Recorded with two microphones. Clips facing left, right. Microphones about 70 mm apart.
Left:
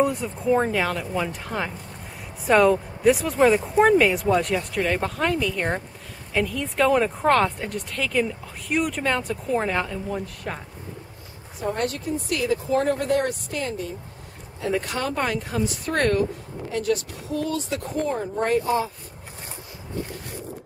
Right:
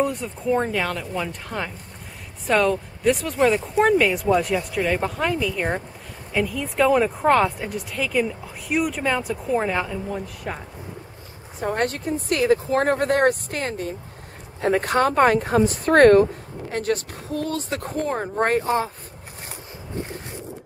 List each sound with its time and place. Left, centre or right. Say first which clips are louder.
0.0 s speech: left 1 dB; centre
11.6 s speech: right 2 dB; right